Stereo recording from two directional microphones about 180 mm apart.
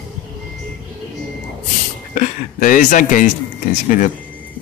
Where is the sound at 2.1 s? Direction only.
45° left (ahead or behind).